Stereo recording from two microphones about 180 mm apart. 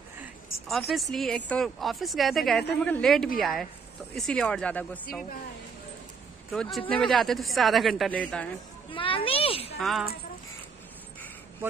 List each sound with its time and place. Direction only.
0.2 s a sound: centre (ahead or behind)
1.1 s a woman's voice: 5° left (ahead or behind)
6.5 s a woman's voice: centre (ahead or behind)
8.9 s a child's voice: 30° left (ahead or behind)
9.8 s speech: centre (ahead or behind)